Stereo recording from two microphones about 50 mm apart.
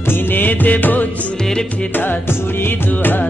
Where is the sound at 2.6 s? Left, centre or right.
Left.